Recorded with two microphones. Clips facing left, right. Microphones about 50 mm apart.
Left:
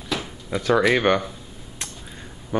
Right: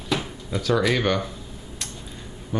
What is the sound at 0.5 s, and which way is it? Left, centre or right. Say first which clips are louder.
Speech: left 3 dB; left.